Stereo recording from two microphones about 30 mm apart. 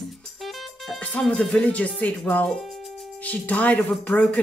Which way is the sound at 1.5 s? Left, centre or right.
Left.